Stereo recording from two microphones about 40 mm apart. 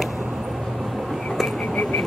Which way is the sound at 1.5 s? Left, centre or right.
Left.